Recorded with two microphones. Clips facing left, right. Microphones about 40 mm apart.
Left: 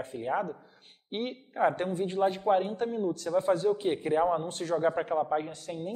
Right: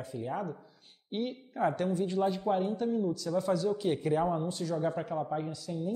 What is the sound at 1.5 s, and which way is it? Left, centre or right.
A man's voice, left.